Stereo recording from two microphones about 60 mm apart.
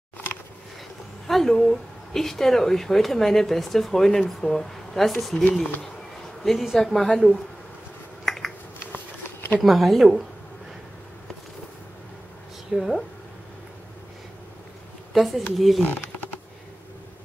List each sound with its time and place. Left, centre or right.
1.2 s speech: centre
6.4 s speech: centre
8.3 s finger snapping: centre
8.7 s a sound: left
9.6 s speech: centre
12.7 s speech: centre
15.1 s speech: centre
15.8 s typing: left